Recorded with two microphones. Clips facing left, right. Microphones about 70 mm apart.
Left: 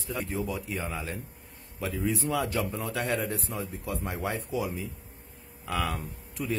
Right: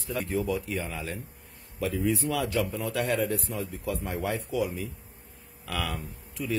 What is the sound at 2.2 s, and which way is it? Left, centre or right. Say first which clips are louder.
A man's voice: right 1 dB; left.